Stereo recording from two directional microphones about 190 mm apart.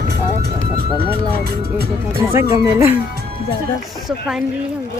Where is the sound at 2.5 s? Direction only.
20° right (ahead or behind).